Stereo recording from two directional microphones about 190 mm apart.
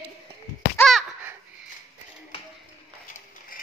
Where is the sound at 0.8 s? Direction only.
Centre (ahead or behind).